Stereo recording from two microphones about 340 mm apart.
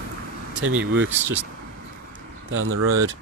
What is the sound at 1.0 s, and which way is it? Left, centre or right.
Speech, centre.